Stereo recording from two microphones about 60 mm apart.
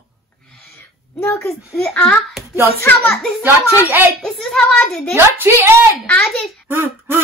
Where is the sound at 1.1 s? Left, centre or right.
Left.